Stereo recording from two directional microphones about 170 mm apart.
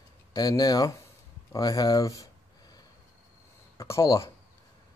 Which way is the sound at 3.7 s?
20° left (ahead or behind).